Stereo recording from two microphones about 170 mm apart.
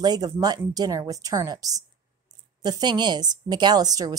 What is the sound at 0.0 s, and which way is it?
Speech, 25° right (ahead or behind).